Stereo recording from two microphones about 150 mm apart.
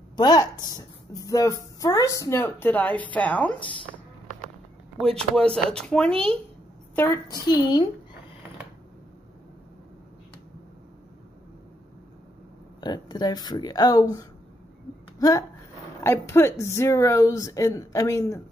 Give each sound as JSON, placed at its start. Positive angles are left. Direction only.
{"t": 0.1, "sound": "a woman's voice", "side_deg": 25}
{"t": 5.0, "sound": "speech", "side_deg": 5}
{"t": 7.2, "sound": "a woman's voice", "side_deg": 25}
{"t": 12.8, "sound": "a woman's voice", "side_deg": 25}